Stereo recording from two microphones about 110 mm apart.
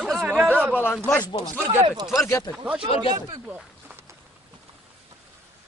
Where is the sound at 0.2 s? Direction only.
15° right (ahead or behind).